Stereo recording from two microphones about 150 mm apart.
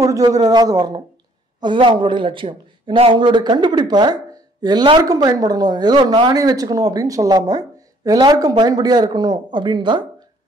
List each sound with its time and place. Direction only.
0.0 s speech: 25° right (ahead or behind)